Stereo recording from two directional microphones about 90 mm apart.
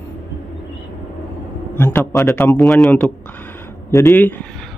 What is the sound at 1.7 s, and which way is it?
Speech, 20° left (ahead or behind).